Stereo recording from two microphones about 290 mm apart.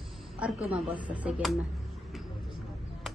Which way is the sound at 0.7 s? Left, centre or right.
Centre.